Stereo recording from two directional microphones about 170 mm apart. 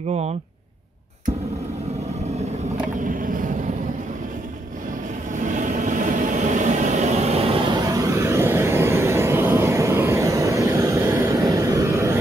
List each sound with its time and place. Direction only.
3.0 s vehicle: 55° right (ahead or behind)
5.3 s vehicle: 50° right (ahead or behind); by 12.2 s 15° right (ahead or behind)